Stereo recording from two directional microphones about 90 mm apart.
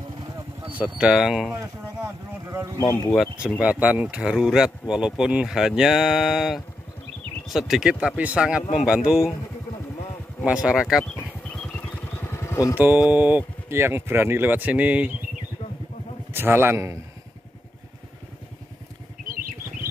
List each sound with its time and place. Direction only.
0.7 s speech: 15° right (ahead or behind)
2.4 s a sound: 25° right (ahead or behind)
3.4 s speech: 15° right (ahead or behind)
4.2 s speech: 5° right (ahead or behind)
10.4 s speech: 10° right (ahead or behind)
11.4 s vehicle: 10° left (ahead or behind)
12.2 s vehicle: 30° left (ahead or behind)
12.7 s speech: 20° right (ahead or behind)
16.3 s a man's voice: 25° right (ahead or behind)